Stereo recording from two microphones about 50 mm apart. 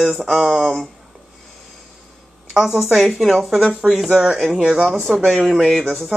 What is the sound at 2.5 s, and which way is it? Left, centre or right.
Speech, centre.